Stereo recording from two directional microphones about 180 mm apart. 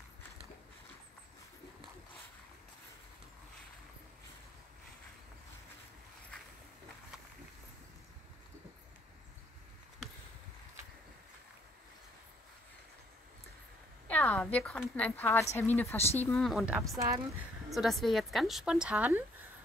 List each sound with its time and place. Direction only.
14.0 s a woman's voice: 10° left (ahead or behind)
17.0 s speech: 15° right (ahead or behind)
17.7 s a woman's voice: centre (ahead or behind)